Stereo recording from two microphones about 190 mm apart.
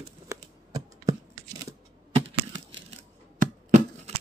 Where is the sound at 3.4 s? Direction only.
35° right (ahead or behind).